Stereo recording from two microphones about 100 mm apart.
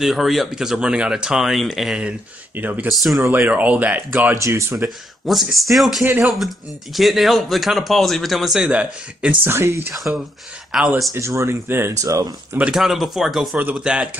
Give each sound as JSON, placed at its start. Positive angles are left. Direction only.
{"t": 0.0, "sound": "speech", "side_deg": 0}
{"t": 2.9, "sound": "speech", "side_deg": 0}
{"t": 3.2, "sound": "speech", "side_deg": -20}
{"t": 4.4, "sound": "speech", "side_deg": -30}
{"t": 4.7, "sound": "speech", "side_deg": 0}
{"t": 6.0, "sound": "speech", "side_deg": -20}
{"t": 6.3, "sound": "speech", "side_deg": 0}
{"t": 8.6, "sound": "speech", "side_deg": -15}
{"t": 9.5, "sound": "speech", "side_deg": -25}
{"t": 9.9, "sound": "speech", "side_deg": 0}
{"t": 11.1, "sound": "speech", "side_deg": -30}
{"t": 12.7, "sound": "speech", "side_deg": -5}